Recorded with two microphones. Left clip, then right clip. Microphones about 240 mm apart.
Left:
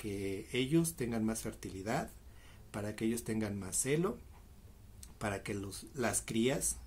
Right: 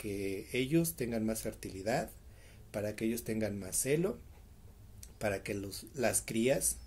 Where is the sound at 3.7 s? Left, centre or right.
Centre.